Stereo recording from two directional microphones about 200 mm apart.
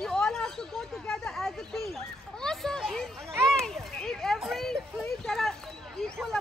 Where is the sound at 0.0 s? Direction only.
5° left (ahead or behind).